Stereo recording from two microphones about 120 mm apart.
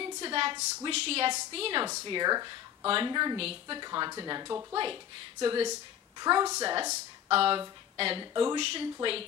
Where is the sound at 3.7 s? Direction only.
35° right (ahead or behind).